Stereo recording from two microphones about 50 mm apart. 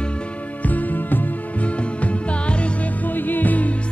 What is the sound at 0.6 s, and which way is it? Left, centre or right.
Music, left.